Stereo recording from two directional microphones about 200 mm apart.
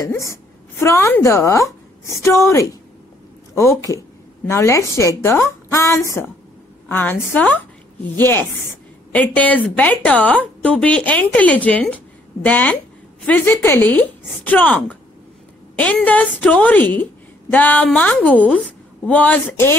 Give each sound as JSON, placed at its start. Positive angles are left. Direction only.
{"t": 0.0, "sound": "a woman's voice", "side_deg": 15}